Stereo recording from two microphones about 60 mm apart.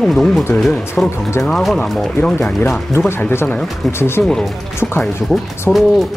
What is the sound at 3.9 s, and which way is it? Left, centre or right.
Speech, left.